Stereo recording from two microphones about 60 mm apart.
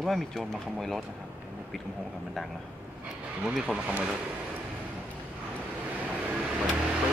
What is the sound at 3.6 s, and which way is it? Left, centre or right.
Speech, right.